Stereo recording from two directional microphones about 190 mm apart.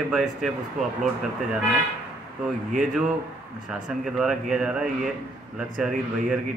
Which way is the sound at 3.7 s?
Centre (ahead or behind).